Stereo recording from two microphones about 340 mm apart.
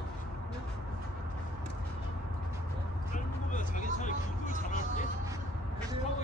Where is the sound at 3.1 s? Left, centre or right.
Left.